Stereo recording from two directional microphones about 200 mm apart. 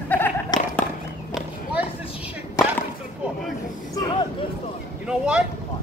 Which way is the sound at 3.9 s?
15° left (ahead or behind).